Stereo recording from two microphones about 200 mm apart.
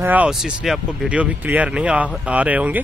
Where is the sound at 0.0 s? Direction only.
10° right (ahead or behind).